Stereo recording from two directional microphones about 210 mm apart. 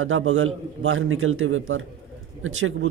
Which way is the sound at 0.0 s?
70° right (ahead or behind).